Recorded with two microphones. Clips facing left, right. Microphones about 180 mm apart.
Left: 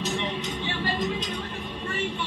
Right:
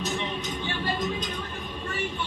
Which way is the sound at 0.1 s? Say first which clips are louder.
Left 1 dB; 20° left (ahead or behind).